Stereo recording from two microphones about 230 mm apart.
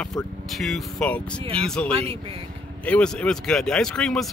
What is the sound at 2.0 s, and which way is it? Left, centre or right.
Speech, right.